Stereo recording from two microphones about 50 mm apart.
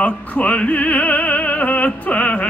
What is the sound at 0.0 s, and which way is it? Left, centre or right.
Opera, left.